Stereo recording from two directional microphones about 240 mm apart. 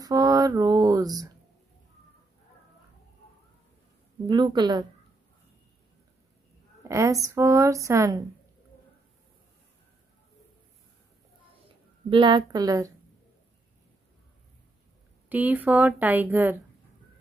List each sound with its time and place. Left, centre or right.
0.0 s a sound: centre
4.3 s a woman's voice: centre
6.9 s a woman's voice: centre
12.1 s a woman's voice: centre
15.2 s a woman's voice: centre